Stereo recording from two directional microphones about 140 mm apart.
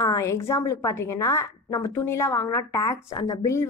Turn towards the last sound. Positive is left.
turn(degrees=25)  # may be behind; listen again after turning